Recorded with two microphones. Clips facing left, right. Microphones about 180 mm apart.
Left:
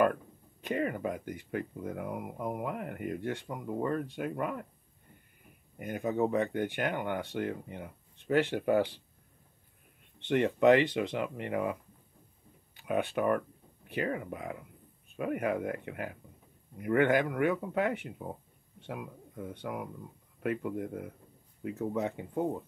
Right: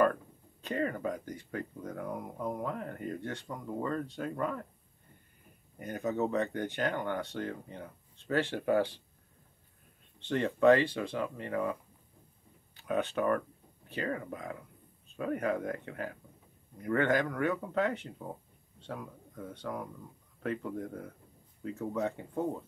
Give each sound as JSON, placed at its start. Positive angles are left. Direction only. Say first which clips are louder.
{"t": 0.7, "sound": "speech", "louder": "left 1 dB", "side_deg": 15}
{"t": 5.8, "sound": "speech", "louder": "left 2 dB", "side_deg": 15}
{"t": 10.2, "sound": "speech", "louder": "left 1 dB", "side_deg": 20}
{"t": 18.8, "sound": "a sound", "louder": "left 1 dB", "side_deg": 15}
{"t": 19.5, "sound": "speech", "louder": "even", "side_deg": 15}